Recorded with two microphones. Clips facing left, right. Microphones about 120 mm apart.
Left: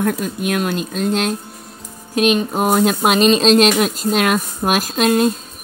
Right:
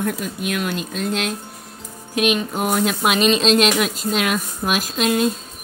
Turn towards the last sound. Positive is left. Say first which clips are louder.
# left 4 dB
turn(degrees=45)  # may be behind; listen again after turning